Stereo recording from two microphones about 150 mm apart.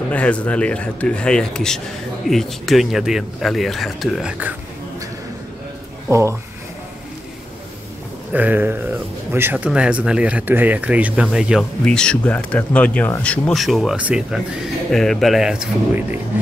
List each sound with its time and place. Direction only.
0.1 s speech: 10° left (ahead or behind); by 4.6 s 10° right (ahead or behind)
6.0 s speech: 20° right (ahead or behind)
8.3 s speech: 10° right (ahead or behind)